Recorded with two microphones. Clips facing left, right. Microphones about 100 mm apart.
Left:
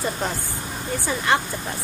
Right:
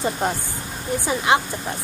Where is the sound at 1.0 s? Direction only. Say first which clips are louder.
Right 2 dB; 15° right (ahead or behind).